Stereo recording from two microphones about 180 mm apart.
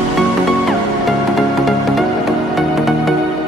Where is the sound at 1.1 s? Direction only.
Centre (ahead or behind).